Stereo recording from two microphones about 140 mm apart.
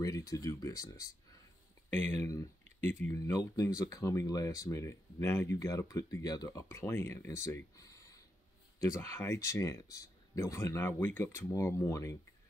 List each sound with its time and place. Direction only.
0.0 s speech: 25° left (ahead or behind)